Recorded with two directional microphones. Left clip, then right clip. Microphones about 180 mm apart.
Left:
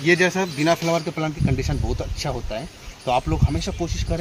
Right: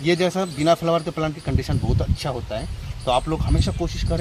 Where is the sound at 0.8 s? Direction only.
15° right (ahead or behind).